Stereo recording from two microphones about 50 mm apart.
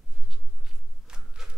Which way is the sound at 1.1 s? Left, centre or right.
Centre.